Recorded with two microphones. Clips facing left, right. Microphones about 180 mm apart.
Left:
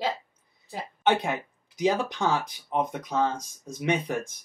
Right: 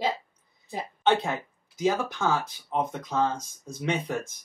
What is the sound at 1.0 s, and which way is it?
Speech, 15° left (ahead or behind).